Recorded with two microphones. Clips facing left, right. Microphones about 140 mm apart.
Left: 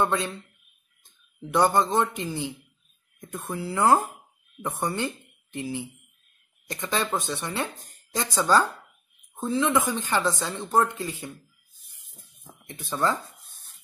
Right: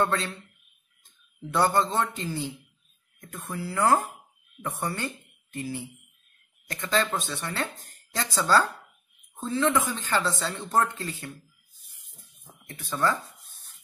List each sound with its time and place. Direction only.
0.0 s speech: 15° left (ahead or behind)
1.5 s speech: 15° left (ahead or behind)